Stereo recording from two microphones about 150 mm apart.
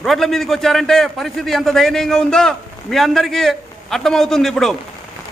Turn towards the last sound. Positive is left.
turn(degrees=0)  # may be behind; listen again after turning